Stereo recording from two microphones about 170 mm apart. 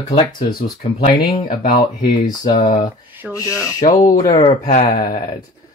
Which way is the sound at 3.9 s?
45° left (ahead or behind).